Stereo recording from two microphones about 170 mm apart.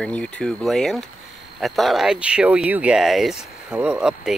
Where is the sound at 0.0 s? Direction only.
5° left (ahead or behind).